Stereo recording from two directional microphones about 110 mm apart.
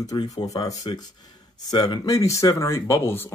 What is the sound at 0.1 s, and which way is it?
Speech, 45° left (ahead or behind).